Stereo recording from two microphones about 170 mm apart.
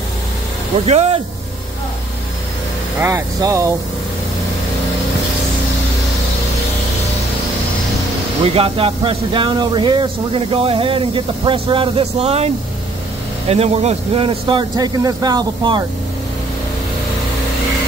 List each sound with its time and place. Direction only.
0.8 s speech: 40° right (ahead or behind)
3.0 s speech: 15° right (ahead or behind)
8.5 s speech: 35° right (ahead or behind)